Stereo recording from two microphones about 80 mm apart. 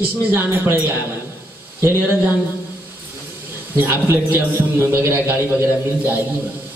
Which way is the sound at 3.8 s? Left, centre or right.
Right.